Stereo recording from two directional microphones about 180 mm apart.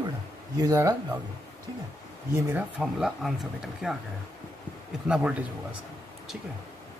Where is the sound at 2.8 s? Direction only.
Centre (ahead or behind).